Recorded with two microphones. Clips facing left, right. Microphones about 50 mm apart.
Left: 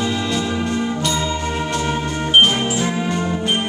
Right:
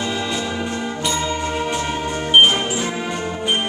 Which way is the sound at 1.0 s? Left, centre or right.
Centre.